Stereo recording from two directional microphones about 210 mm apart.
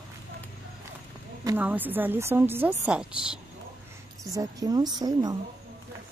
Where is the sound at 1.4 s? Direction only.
10° right (ahead or behind).